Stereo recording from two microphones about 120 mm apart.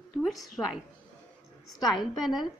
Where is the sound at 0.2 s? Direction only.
Centre (ahead or behind).